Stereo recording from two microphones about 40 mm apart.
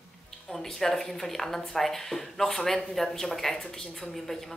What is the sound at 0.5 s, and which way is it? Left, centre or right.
Speech, centre.